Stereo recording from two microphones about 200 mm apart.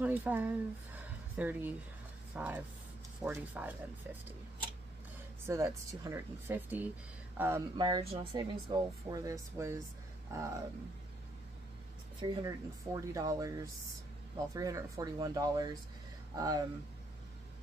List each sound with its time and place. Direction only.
0.0 s speech: 10° right (ahead or behind)
5.5 s speech: 15° right (ahead or behind)
7.8 s speech: 25° right (ahead or behind)
12.2 s speech: 15° right (ahead or behind)